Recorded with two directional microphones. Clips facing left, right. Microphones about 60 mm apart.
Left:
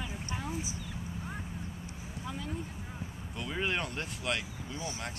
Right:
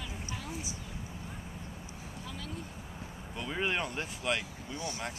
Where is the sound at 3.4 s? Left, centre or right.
Centre.